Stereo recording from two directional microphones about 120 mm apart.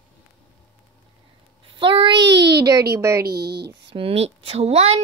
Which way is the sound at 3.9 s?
50° right (ahead or behind).